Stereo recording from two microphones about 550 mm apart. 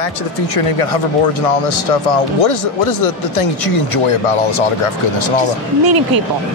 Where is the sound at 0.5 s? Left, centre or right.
Left.